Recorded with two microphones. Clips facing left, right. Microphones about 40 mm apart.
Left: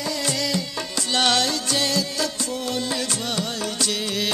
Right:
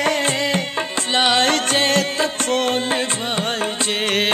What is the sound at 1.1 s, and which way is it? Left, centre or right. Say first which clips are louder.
Music: right 3 dB; right.